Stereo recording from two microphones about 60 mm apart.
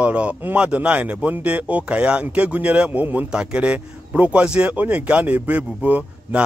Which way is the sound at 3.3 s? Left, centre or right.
Centre.